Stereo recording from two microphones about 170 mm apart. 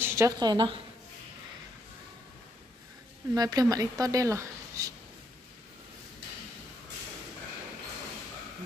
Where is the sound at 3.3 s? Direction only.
20° right (ahead or behind).